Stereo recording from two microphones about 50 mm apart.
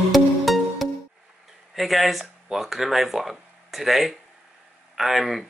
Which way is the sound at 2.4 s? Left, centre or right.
Centre.